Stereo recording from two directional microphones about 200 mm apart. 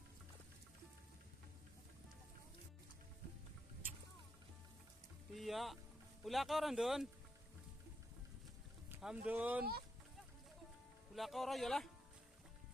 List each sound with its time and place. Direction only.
5.3 s speech: centre (ahead or behind)
8.8 s speech: 5° right (ahead or behind)
11.1 s speech: centre (ahead or behind)